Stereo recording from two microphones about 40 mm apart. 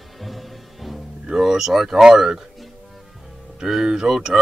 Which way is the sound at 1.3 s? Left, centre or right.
Centre.